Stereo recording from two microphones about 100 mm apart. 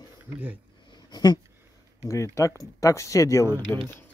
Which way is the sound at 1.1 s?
45° left (ahead or behind).